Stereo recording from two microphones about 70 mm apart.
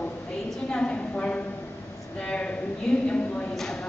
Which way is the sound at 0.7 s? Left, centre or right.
Centre.